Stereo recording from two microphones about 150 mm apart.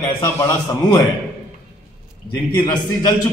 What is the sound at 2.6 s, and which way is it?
Speech, 25° left (ahead or behind).